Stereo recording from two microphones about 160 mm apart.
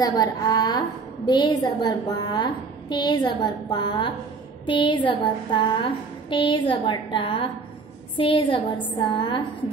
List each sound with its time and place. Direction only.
0.0 s a woman's voice: 25° left (ahead or behind)
4.6 s a sound: 30° left (ahead or behind)
8.9 s a woman's voice: 30° left (ahead or behind)